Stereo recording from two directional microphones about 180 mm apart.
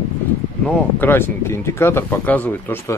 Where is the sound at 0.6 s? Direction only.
10° left (ahead or behind).